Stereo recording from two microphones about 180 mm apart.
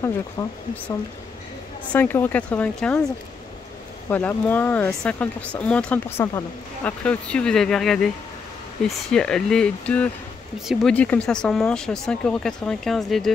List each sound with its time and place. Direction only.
0.0 s speech: 15° left (ahead or behind)
4.1 s speech: 10° left (ahead or behind)